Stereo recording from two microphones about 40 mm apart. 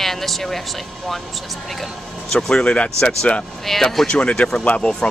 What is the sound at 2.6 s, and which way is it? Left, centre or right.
Speech, left.